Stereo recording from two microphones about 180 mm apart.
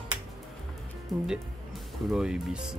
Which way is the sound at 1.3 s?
5° right (ahead or behind).